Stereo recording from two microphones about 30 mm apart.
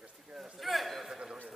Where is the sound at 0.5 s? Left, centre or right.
Centre.